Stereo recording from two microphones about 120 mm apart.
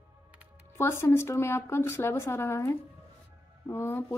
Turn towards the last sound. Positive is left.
turn(degrees=20)  # may be behind; listen again after turning